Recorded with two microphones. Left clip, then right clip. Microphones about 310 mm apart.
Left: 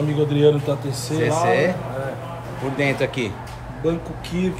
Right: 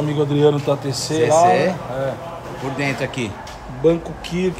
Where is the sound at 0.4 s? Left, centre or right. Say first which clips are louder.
Right 1 dB; right.